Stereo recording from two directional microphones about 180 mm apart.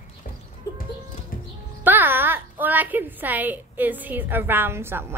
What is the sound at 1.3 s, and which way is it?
Music, 50° left (ahead or behind).